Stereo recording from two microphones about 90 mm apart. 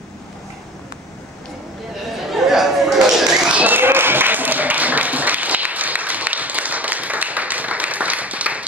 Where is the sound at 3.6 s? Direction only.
20° right (ahead or behind).